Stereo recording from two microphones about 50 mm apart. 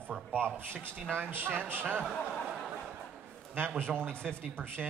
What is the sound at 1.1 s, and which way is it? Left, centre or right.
Speech, right.